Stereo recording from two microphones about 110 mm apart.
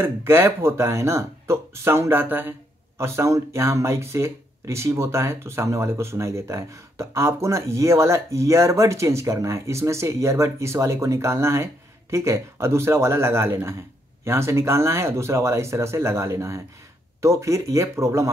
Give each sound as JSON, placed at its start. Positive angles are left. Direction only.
{"t": 0.0, "sound": "speech", "side_deg": -20}